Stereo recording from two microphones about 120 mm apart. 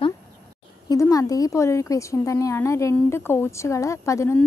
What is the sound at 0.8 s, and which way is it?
A woman's voice, 30° left (ahead or behind).